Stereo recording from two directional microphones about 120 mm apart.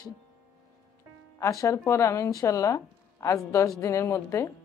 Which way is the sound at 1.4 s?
25° left (ahead or behind).